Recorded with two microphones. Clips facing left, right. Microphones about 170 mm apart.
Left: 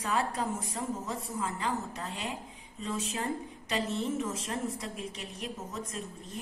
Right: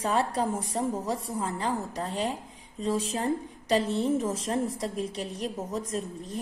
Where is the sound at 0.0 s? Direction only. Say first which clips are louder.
Right 5 dB; 30° right (ahead or behind).